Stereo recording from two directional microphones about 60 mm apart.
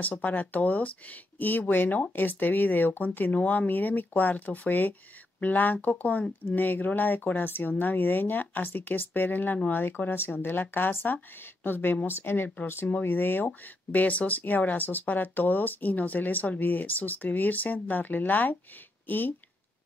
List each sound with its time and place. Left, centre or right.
0.0 s speech: left